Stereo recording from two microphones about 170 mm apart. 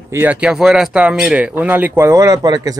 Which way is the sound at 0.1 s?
10° right (ahead or behind).